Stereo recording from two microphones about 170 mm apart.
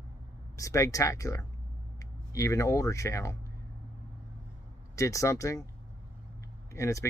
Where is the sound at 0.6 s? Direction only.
20° left (ahead or behind).